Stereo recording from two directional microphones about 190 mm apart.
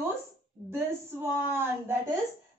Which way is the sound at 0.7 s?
10° right (ahead or behind).